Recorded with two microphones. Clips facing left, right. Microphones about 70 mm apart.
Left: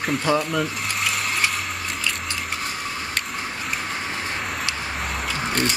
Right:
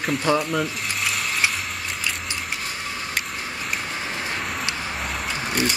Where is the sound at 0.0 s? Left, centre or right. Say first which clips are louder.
Even; centre.